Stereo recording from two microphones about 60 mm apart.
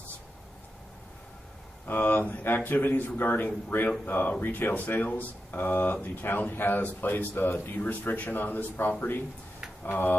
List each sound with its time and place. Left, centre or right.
1.9 s speech: left